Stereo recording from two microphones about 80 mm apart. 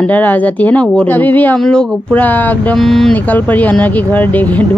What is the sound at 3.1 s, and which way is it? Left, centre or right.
Speech, left.